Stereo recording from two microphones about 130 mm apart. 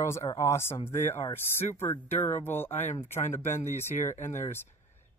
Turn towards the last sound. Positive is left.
turn(degrees=20)  # may be behind; listen again after turning